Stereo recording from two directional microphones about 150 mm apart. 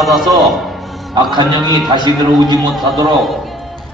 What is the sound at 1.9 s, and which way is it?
Speech, 30° right (ahead or behind).